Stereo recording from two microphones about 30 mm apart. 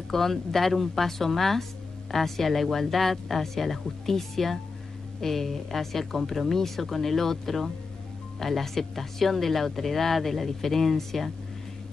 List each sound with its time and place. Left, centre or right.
0.1 s speech: centre